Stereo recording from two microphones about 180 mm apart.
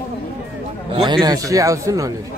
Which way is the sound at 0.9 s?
25° right (ahead or behind).